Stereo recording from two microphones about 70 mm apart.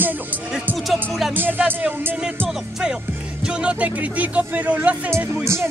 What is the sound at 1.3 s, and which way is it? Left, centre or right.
Music, right.